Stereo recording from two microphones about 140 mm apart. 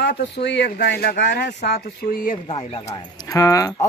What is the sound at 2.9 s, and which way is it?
Speech, 25° left (ahead or behind).